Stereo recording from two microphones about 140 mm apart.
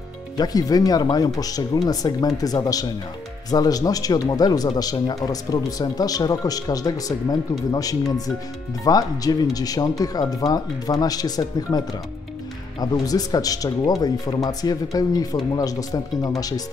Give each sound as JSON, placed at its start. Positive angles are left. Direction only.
{"t": 0.4, "sound": "speech", "side_deg": 25}
{"t": 12.8, "sound": "speech", "side_deg": 25}